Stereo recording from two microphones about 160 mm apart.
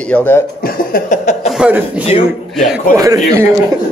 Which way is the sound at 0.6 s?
60° left (ahead or behind).